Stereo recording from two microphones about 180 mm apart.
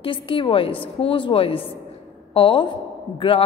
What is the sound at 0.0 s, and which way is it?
A woman's voice, 30° left (ahead or behind).